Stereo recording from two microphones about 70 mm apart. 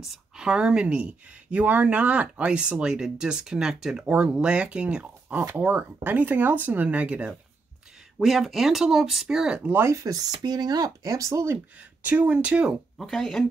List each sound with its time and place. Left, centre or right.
0.0 s speech: centre
4.0 s speech: centre
8.2 s speech: centre
9.8 s speech: right
11.5 s speech: right
12.9 s speech: centre